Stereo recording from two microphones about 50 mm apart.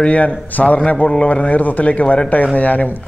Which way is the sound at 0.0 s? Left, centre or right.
Left.